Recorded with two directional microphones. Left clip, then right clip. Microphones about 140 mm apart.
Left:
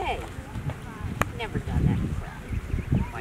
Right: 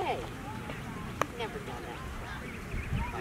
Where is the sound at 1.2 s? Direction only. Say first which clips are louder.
Left 4 dB; 40° left (ahead or behind).